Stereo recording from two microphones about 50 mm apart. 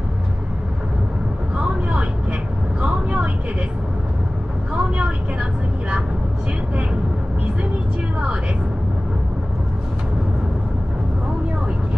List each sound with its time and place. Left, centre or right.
1.6 s vehicle: right
4.7 s vehicle: centre